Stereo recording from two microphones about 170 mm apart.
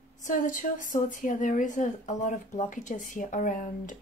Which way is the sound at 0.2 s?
50° left (ahead or behind).